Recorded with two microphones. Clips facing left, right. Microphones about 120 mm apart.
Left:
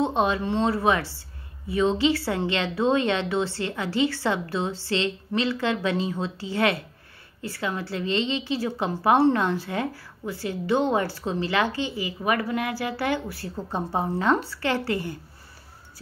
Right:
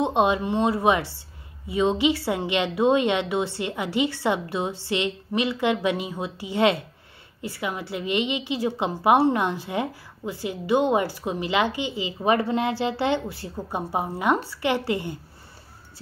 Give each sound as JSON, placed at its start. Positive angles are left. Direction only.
{"t": 0.0, "sound": "a woman's voice", "side_deg": -20}